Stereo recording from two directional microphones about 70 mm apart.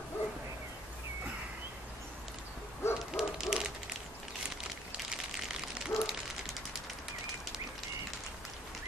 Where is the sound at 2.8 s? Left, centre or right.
Left.